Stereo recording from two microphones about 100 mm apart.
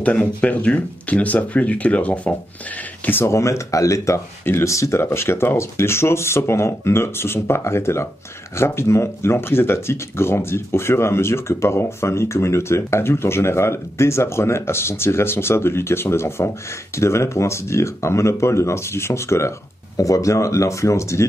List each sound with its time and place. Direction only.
0.0 s speech: 15° left (ahead or behind)
3.1 s speech: 25° left (ahead or behind)